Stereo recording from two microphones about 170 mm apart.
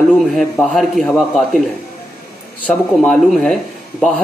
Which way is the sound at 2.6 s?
5° left (ahead or behind).